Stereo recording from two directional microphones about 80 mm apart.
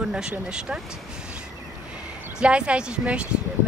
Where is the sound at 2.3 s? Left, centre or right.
Centre.